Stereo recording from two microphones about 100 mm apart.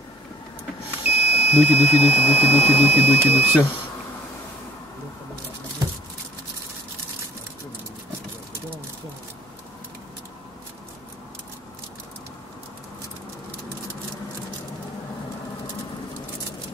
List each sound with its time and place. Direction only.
1.0 s speech: 80° left
2.9 s speech: 15° right (ahead or behind)